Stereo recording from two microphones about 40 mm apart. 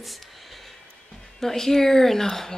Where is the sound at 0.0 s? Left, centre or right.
Centre.